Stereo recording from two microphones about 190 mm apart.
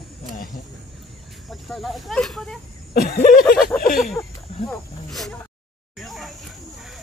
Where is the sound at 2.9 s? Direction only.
50° left (ahead or behind).